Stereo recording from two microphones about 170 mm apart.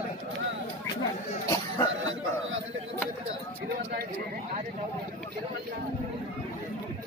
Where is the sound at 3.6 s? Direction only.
70° right (ahead or behind).